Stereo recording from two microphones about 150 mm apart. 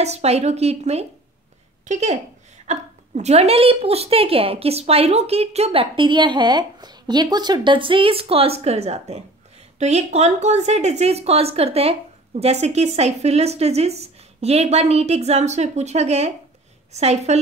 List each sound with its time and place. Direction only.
0.0 s a woman's voice: 45° right (ahead or behind)